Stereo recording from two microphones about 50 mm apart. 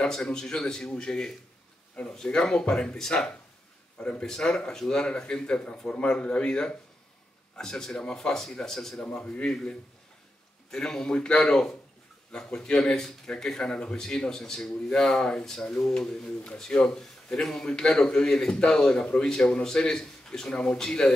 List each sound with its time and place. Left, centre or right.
0.0 s speech: centre
9.0 s speech: left
10.7 s speech: centre